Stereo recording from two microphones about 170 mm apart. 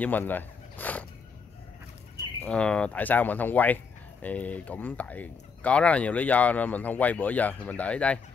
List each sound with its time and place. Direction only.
0.0 s speech: 10° left (ahead or behind)
2.4 s speech: 5° left (ahead or behind)